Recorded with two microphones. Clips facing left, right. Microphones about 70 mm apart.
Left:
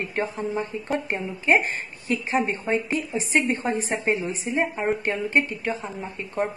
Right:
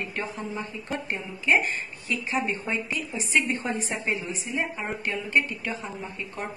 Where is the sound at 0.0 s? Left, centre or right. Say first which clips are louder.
Left 5 dB; left.